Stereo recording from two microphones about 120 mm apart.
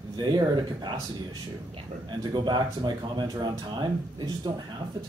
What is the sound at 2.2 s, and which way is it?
Speech, 40° right (ahead or behind).